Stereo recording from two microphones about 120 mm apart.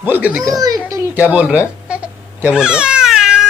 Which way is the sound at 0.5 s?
30° right (ahead or behind).